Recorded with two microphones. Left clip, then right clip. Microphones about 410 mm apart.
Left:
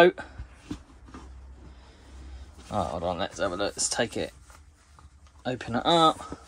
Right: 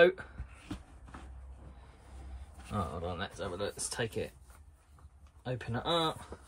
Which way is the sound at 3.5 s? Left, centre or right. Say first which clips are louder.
Left 9 dB; centre.